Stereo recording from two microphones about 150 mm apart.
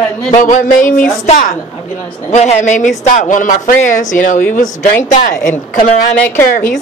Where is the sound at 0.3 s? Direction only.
55° left (ahead or behind).